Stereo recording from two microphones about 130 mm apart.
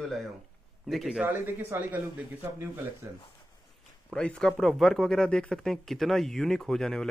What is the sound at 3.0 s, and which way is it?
Speech, 25° right (ahead or behind).